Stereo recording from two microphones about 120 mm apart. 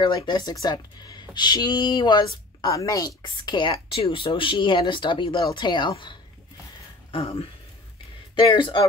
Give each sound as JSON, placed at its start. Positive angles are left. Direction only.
{"t": 0.0, "sound": "speech", "side_deg": 40}